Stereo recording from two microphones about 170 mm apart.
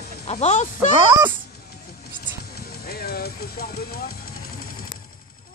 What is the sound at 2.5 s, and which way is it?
Music, 65° left (ahead or behind).